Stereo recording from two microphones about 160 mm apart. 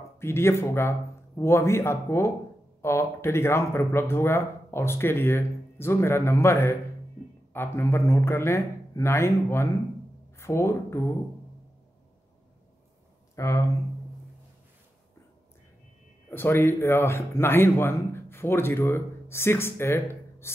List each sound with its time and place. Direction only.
0.2 s speech: 15° left (ahead or behind)
13.4 s speech: 20° left (ahead or behind)
16.3 s speech: 15° left (ahead or behind)